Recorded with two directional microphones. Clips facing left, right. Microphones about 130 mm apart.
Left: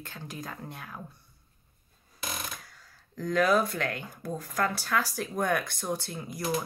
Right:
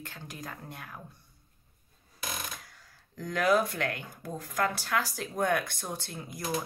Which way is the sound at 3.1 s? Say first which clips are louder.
Left 2 dB; 20° right (ahead or behind).